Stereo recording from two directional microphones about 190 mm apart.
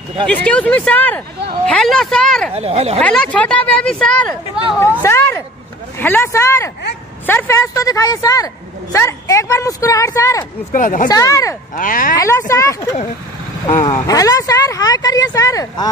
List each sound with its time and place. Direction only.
0.3 s speech: 5° left (ahead or behind)
2.5 s speech: 35° right (ahead or behind)
3.0 s speech: 5° left (ahead or behind)
10.7 s speech: 45° left (ahead or behind)
11.1 s speech: 20° left (ahead or behind)
11.7 s speech: 45° left (ahead or behind)
12.2 s speech: 15° left (ahead or behind)
13.8 s speech: 20° left (ahead or behind)